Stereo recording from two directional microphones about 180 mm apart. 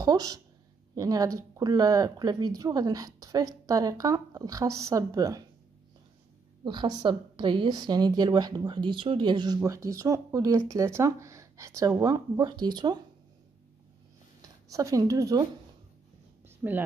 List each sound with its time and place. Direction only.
0.0 s speech: 20° right (ahead or behind)
6.6 s speech: 25° right (ahead or behind)
14.7 s speech: 20° right (ahead or behind)
16.4 s a sound: 10° right (ahead or behind)